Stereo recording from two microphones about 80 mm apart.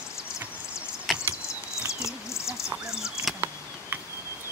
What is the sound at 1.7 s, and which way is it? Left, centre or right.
Bird, left.